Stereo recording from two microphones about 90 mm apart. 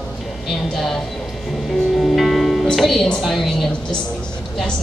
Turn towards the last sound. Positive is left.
turn(degrees=0)  # may be behind; listen again after turning